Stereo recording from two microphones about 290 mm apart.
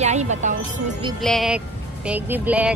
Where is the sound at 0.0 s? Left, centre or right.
Right.